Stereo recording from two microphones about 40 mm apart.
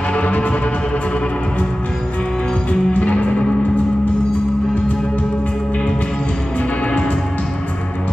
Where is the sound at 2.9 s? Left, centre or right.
Left.